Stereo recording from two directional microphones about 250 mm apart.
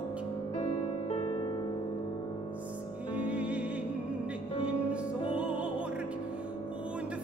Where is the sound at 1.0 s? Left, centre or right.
Left.